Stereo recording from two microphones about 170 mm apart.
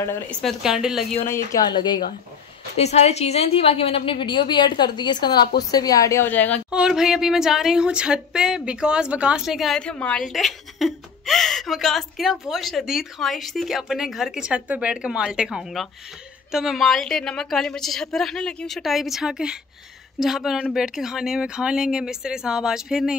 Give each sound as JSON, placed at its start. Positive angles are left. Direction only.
{"t": 0.0, "sound": "a woman's voice", "side_deg": 15}
{"t": 0.4, "sound": "speech", "side_deg": 0}
{"t": 1.3, "sound": "a woman's voice", "side_deg": 20}
{"t": 2.8, "sound": "a woman's voice", "side_deg": 40}
{"t": 6.7, "sound": "speech", "side_deg": -5}